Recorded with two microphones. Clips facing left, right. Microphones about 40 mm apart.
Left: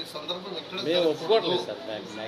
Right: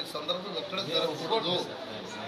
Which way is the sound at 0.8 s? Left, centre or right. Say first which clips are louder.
Left 8 dB; left.